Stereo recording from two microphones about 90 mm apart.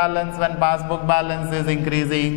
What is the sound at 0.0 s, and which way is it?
A man's voice, 15° left (ahead or behind).